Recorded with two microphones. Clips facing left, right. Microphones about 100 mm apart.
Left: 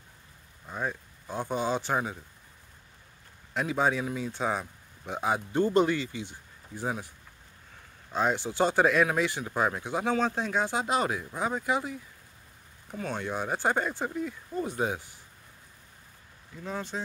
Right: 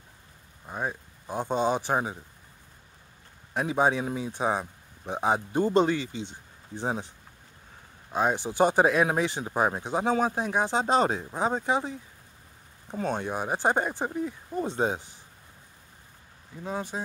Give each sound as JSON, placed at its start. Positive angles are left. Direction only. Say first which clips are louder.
{"t": 0.7, "sound": "speech", "louder": "right 1 dB", "side_deg": -20}
{"t": 3.5, "sound": "speech", "louder": "right 2 dB", "side_deg": -20}
{"t": 8.1, "sound": "speech", "louder": "right 2 dB", "side_deg": -15}
{"t": 10.8, "sound": "speech", "louder": "right 4 dB", "side_deg": -30}
{"t": 13.0, "sound": "speech", "louder": "right 3 dB", "side_deg": -20}
{"t": 16.6, "sound": "speech", "louder": "right 2 dB", "side_deg": -15}